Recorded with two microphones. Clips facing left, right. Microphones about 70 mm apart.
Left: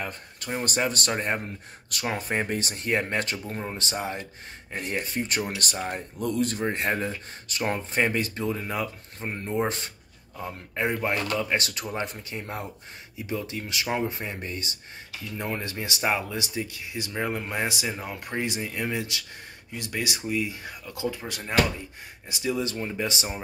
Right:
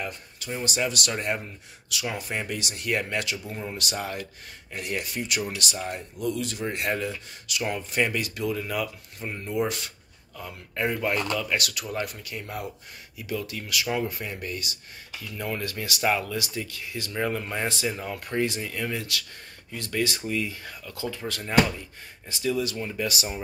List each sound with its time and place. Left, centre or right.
0.0 s speech: left
4.7 s speech: left